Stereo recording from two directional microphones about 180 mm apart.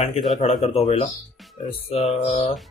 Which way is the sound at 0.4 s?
35° left (ahead or behind).